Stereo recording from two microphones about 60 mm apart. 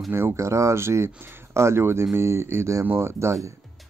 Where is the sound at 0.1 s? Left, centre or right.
Right.